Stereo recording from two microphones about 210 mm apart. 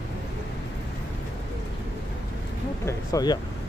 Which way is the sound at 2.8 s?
20° left (ahead or behind).